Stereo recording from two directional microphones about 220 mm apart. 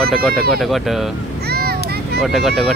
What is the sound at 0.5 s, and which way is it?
Speech, centre (ahead or behind).